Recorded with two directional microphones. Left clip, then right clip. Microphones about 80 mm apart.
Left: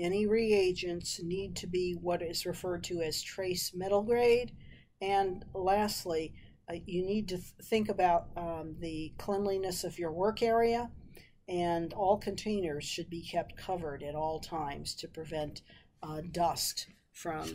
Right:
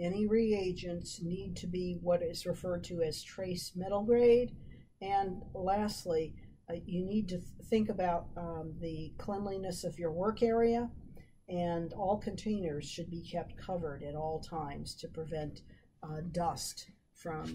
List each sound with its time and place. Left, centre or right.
0.0 s speech: left